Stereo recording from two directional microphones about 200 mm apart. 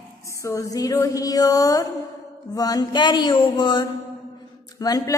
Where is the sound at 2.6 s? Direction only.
20° left (ahead or behind).